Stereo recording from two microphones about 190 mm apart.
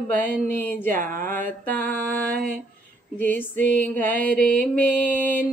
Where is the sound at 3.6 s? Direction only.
45° right (ahead or behind).